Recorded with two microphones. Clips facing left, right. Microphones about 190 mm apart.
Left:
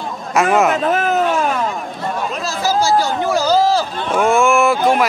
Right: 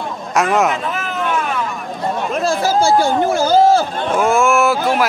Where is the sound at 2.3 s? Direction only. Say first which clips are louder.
Right 4 dB; 55° right (ahead or behind).